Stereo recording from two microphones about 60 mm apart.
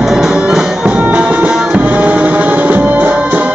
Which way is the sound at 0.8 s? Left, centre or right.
Right.